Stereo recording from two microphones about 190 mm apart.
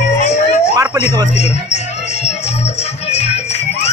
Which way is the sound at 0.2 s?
35° left (ahead or behind).